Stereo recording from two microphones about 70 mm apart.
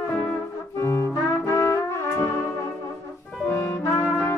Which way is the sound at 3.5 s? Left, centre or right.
Left.